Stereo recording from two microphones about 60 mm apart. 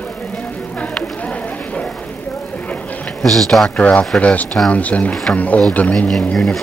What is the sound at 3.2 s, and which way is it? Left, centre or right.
Speech, centre.